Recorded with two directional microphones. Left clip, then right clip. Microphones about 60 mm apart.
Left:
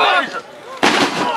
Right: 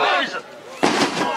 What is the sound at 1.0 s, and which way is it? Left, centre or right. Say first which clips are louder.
Gunshot: left 4 dB; centre.